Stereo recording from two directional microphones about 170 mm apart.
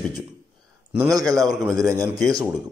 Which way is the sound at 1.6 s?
20° right (ahead or behind).